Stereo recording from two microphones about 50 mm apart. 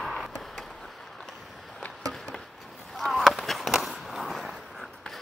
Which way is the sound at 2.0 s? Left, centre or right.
Centre.